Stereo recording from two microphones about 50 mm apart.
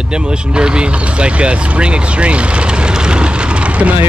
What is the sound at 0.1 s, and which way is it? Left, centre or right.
Speech, centre.